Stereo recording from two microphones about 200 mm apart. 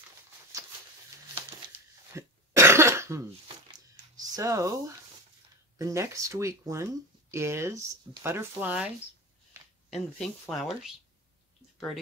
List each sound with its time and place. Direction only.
0.5 s a sound: 15° right (ahead or behind)
2.1 s cough: 15° right (ahead or behind)
4.2 s speech: 15° right (ahead or behind)